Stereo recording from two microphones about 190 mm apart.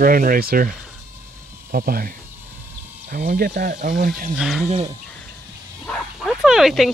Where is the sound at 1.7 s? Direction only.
50° right (ahead or behind).